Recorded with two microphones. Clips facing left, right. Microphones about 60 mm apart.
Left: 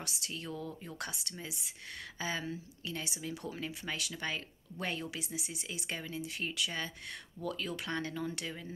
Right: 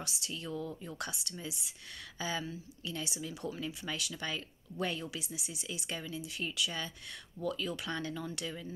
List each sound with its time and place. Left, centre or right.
0.0 s speech: left